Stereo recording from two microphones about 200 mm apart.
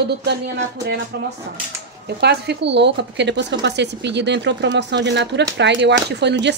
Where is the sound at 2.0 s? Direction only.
55° right (ahead or behind).